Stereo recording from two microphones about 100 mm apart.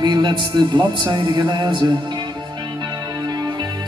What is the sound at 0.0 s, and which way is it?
A man's voice, 45° right (ahead or behind).